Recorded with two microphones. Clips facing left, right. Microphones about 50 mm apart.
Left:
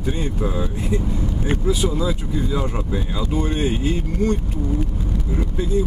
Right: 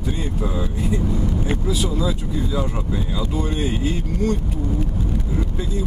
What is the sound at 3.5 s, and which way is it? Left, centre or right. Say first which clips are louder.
Speech: left 2 dB; left.